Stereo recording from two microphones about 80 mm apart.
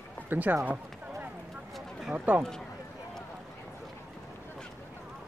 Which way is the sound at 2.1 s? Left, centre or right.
Centre.